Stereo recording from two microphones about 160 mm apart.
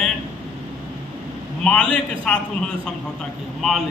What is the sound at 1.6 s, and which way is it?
Speech, 5° left (ahead or behind).